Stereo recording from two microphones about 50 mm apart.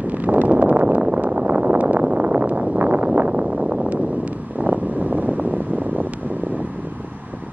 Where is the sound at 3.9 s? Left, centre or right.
Right.